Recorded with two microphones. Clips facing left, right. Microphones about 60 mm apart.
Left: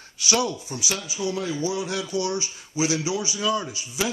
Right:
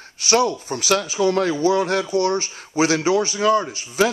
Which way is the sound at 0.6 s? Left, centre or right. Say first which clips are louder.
Right 10 dB; right.